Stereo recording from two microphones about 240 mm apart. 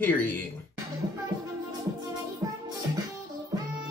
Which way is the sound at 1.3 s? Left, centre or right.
Centre.